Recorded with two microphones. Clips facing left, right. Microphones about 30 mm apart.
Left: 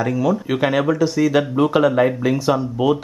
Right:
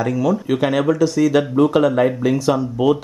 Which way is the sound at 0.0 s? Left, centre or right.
Centre.